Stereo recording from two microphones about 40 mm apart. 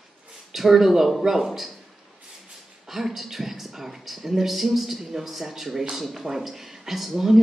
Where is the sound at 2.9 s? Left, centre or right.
Centre.